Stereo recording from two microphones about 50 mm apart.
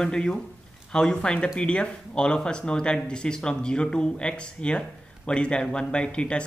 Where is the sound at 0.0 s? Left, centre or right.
Centre.